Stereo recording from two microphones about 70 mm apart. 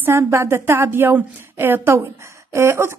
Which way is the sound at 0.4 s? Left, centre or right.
Right.